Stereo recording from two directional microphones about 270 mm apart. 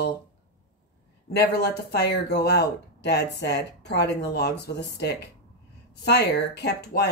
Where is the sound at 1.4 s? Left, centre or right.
Left.